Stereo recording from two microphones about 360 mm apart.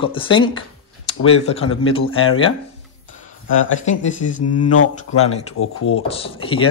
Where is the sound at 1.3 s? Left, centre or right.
Centre.